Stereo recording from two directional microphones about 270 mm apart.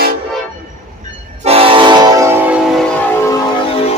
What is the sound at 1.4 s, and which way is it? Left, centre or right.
Train, right.